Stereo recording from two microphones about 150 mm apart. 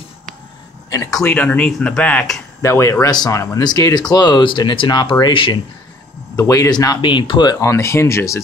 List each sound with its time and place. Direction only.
0.8 s speech: 25° left (ahead or behind)
1.3 s speech: 10° left (ahead or behind)
2.6 s speech: 20° left (ahead or behind)
6.3 s speech: 20° left (ahead or behind)
7.5 s speech: 20° left (ahead or behind)